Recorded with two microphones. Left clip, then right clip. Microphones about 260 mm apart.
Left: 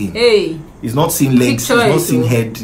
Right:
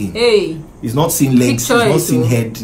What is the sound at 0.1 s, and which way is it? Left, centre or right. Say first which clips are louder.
Speech: left 1 dB; centre.